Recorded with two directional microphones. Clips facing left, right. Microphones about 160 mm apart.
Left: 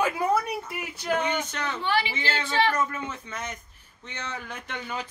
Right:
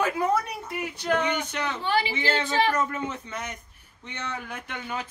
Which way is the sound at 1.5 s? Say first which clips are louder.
Right 2 dB; 15° right (ahead or behind).